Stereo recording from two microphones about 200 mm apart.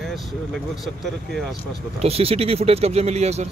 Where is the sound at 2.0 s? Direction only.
30° right (ahead or behind).